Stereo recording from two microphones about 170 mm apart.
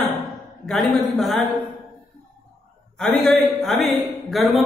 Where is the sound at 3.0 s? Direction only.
5° left (ahead or behind).